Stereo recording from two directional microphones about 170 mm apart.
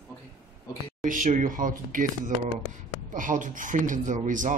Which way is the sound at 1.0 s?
50° right (ahead or behind).